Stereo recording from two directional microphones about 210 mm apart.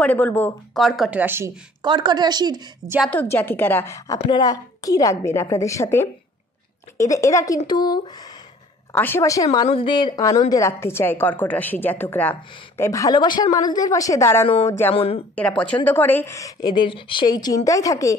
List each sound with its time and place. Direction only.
0.0 s speech: 5° left (ahead or behind); by 3.0 s 20° right (ahead or behind)
3.1 s a woman's voice: 10° left (ahead or behind)
14.9 s a woman's voice: 30° left (ahead or behind)
15.6 s a woman's voice: 10° left (ahead or behind)